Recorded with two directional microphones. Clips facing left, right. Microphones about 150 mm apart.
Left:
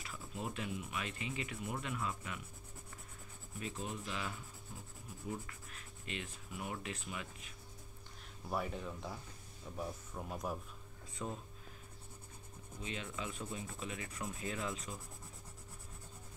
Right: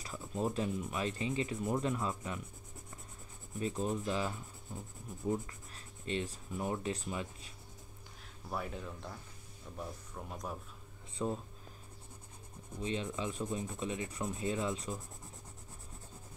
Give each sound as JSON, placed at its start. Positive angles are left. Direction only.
{"t": 0.0, "sound": "speech", "side_deg": -35}
{"t": 3.5, "sound": "speech", "side_deg": -35}
{"t": 8.5, "sound": "speech", "side_deg": 0}
{"t": 11.2, "sound": "speech", "side_deg": -30}
{"t": 12.8, "sound": "rub", "side_deg": -30}